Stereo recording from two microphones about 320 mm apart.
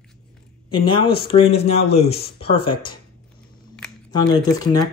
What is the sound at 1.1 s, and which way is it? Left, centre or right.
Speech, centre.